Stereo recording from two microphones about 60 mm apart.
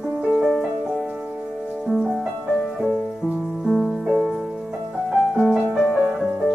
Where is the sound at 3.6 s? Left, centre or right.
Centre.